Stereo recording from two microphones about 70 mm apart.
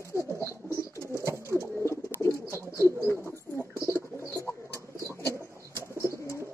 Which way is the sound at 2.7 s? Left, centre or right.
Right.